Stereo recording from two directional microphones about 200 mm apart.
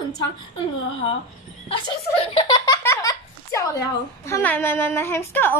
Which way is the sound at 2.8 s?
15° left (ahead or behind).